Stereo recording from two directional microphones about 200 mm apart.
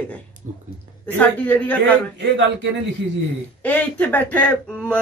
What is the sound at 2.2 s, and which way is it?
Speech, 60° right (ahead or behind).